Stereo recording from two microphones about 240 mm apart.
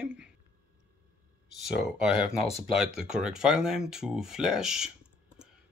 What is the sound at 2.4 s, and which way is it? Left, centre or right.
Speech, left.